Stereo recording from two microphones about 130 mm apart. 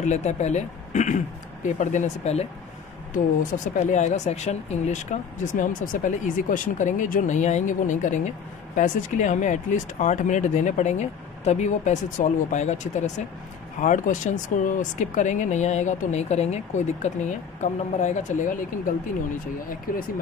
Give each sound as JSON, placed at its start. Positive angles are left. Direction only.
{"t": 0.0, "sound": "speech", "side_deg": 60}
{"t": 3.1, "sound": "speech", "side_deg": 80}
{"t": 13.7, "sound": "speech", "side_deg": 75}
{"t": 19.9, "sound": "speech", "side_deg": 90}